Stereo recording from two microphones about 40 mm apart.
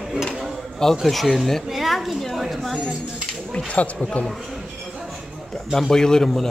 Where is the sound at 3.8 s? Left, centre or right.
Left.